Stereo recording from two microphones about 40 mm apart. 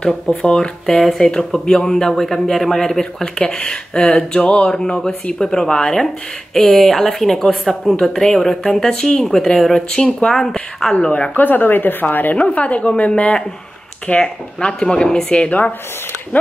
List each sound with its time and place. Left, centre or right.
0.5 s speech: centre
1.0 s speech: centre
11.1 s speech: left
11.3 s speech: left
12.4 s speech: left
14.6 s speech: left
15.4 s speech: left